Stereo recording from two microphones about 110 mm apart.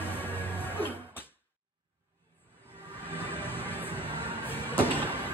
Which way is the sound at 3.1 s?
20° left (ahead or behind).